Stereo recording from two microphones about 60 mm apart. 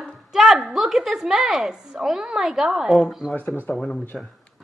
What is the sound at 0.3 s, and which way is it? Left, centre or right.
A woman's voice, centre.